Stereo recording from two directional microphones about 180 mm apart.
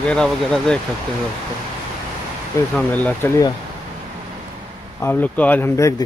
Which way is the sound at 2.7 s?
10° left (ahead or behind).